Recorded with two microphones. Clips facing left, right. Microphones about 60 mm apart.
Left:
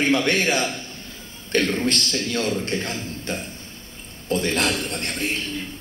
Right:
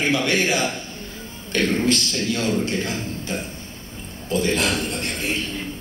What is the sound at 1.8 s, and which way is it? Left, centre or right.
A man's voice, left.